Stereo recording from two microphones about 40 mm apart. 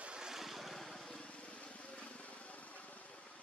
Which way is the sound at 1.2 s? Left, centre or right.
Left.